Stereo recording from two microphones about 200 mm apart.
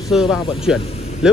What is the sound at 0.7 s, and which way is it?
Speech, 30° left (ahead or behind).